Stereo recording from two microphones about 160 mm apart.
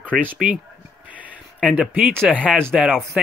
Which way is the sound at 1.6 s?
Centre (ahead or behind).